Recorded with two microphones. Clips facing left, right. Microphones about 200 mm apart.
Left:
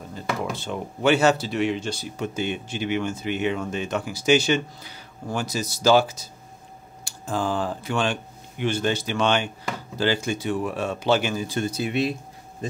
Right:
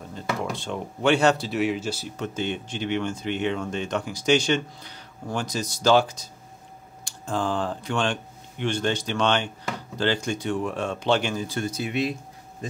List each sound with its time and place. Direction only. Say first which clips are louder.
0.1 s speech: left 1 dB; 5° left (ahead or behind)
2.0 s speech: left 3 dB; 10° left (ahead or behind)
11.5 s speech: left 2 dB; 30° left (ahead or behind)